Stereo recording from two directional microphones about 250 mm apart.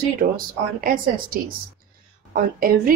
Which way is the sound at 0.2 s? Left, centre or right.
Right.